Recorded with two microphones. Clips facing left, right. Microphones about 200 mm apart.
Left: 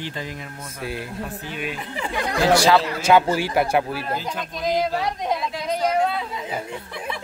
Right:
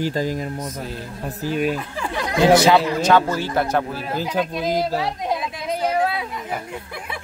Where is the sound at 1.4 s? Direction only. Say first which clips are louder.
Right 12 dB; 40° right (ahead or behind).